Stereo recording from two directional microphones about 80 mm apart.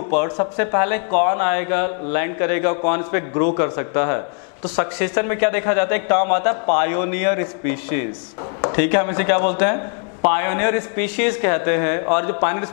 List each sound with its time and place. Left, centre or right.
0.1 s speech: centre